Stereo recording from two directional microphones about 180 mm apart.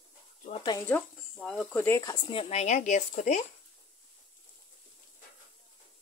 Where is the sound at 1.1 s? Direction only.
Centre (ahead or behind); by 3.5 s 45° left (ahead or behind).